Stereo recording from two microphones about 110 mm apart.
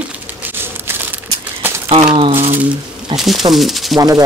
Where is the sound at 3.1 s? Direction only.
Centre (ahead or behind).